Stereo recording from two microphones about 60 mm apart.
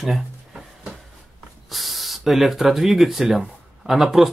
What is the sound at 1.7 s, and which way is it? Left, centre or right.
Speech, centre.